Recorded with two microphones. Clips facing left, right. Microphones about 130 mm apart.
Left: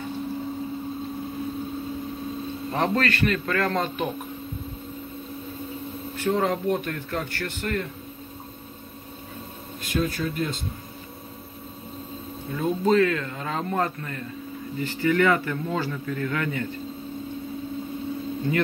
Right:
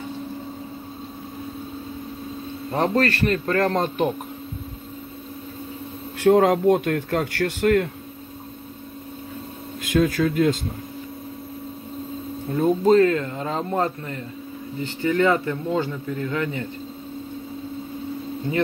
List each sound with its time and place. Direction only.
2.7 s a man's voice: 35° right (ahead or behind)
6.1 s a man's voice: 80° right
9.9 s speech: 90° right
12.5 s a man's voice: 40° right (ahead or behind); by 16.6 s 20° right (ahead or behind)
18.5 s speech: 15° right (ahead or behind)